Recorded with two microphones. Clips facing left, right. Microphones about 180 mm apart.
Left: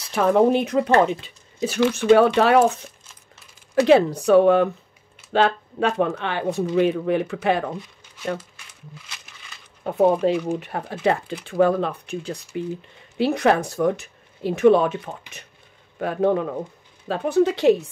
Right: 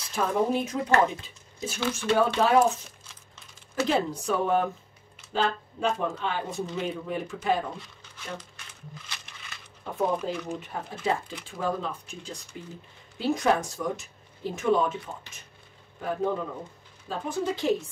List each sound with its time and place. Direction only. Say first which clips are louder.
0.1 s speech: left 9 dB; 70° left (ahead or behind)
3.8 s speech: left 10 dB; 70° left (ahead or behind)
9.9 s speech: left 10 dB; 70° left (ahead or behind)